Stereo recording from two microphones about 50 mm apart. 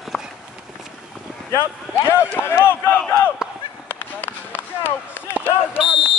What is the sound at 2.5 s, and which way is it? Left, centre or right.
Speech, left.